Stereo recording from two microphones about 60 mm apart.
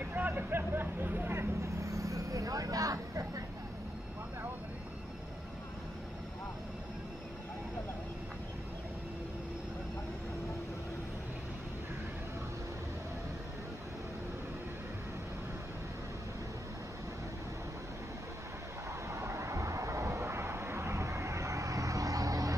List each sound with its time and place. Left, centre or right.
0.0 s vehicle: right
19.1 s vehicle: right